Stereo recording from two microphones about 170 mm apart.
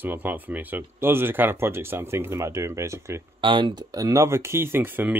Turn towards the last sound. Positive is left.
turn(degrees=-10)  # may be behind; listen again after turning